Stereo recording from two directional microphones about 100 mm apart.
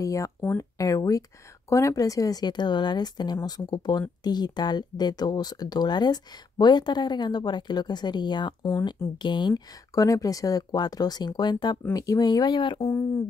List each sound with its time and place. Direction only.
0.0 s speech: 30° left (ahead or behind); by 9.6 s 50° left (ahead or behind)
9.9 s speech: 35° left (ahead or behind); by 12.8 s 55° left (ahead or behind)
12.8 s speech: 30° left (ahead or behind)